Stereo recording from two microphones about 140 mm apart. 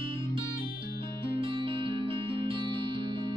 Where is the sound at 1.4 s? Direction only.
35° right (ahead or behind).